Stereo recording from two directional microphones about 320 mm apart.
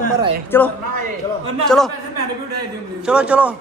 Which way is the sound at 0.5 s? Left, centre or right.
Centre.